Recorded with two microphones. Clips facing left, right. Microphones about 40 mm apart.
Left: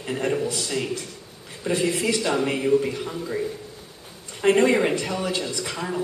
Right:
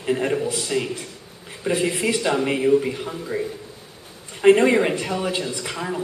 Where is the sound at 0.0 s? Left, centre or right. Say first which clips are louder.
Right 3 dB; centre.